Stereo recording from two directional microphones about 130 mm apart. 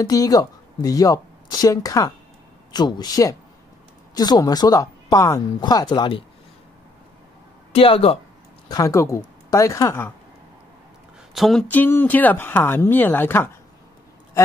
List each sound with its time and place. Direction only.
0.0 s a woman's voice: 30° left (ahead or behind)
7.7 s speech: 45° left (ahead or behind)
8.6 s speech: 25° left (ahead or behind)
11.3 s a sound: centre (ahead or behind)
11.6 s speech: 15° left (ahead or behind)